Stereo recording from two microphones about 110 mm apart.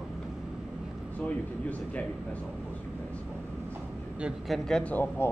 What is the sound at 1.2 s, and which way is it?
Speech, 15° left (ahead or behind).